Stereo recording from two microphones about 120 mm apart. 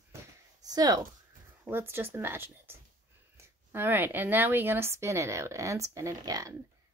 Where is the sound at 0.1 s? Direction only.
30° right (ahead or behind).